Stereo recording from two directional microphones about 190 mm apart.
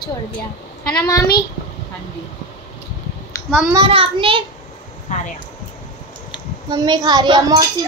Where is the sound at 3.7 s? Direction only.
30° right (ahead or behind).